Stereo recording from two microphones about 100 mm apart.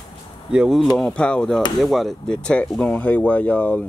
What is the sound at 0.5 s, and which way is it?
Speech, 5° right (ahead or behind).